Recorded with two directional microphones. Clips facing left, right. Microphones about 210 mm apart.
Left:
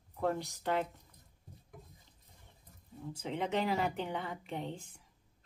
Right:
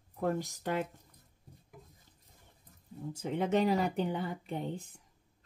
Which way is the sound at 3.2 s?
40° right (ahead or behind).